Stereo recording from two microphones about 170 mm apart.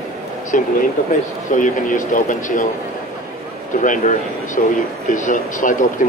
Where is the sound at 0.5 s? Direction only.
50° left (ahead or behind).